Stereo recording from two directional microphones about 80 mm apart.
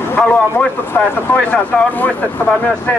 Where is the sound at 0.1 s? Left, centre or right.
Centre.